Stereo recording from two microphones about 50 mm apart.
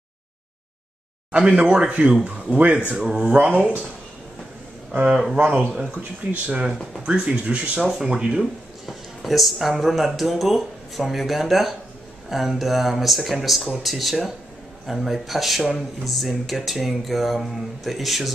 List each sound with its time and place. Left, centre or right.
1.3 s speech: right
2.9 s speech: centre
6.3 s speech: right
8.8 s speech: centre